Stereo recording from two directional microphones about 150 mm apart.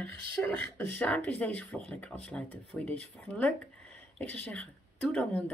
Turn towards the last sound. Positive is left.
turn(degrees=10)  # may be behind; listen again after turning